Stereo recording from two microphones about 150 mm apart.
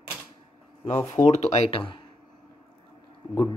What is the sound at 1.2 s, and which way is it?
Speech, 40° left (ahead or behind).